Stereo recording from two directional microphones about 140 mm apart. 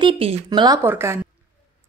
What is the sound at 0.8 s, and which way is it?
Speech, 15° right (ahead or behind).